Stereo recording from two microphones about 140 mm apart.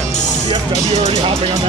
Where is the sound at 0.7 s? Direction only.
50° right (ahead or behind).